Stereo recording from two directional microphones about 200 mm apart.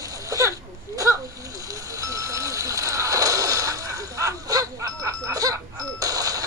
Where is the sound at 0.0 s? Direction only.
15° right (ahead or behind).